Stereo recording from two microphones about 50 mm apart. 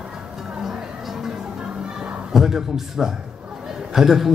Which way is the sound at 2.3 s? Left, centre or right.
Centre.